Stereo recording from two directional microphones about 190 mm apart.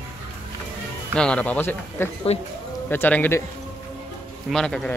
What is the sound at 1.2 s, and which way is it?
Speech, 5° left (ahead or behind).